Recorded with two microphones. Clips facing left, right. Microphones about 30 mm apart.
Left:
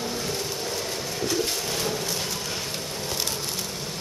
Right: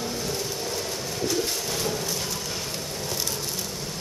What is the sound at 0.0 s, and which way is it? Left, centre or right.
Vehicle, centre.